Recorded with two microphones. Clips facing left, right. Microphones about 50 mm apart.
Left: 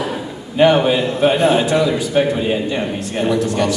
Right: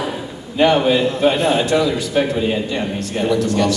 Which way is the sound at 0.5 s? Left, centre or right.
Centre.